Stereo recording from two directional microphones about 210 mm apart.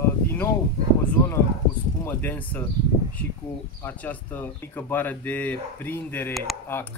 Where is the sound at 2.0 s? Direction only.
10° left (ahead or behind).